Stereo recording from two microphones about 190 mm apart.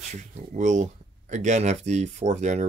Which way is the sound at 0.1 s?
40° right (ahead or behind).